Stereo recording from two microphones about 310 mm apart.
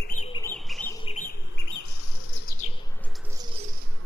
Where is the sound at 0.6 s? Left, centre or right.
Centre.